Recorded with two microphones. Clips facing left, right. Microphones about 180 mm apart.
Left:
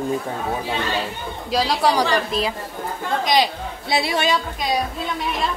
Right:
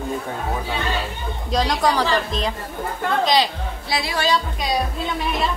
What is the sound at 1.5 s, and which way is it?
A woman's voice, 5° left (ahead or behind).